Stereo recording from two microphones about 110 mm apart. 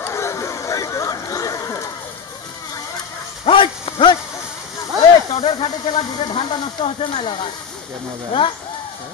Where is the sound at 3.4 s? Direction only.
55° left (ahead or behind).